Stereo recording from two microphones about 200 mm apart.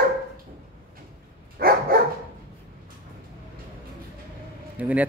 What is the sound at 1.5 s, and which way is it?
Dog, 50° right (ahead or behind).